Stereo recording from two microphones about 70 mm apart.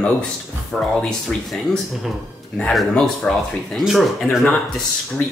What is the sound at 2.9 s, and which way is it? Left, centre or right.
Speech, centre.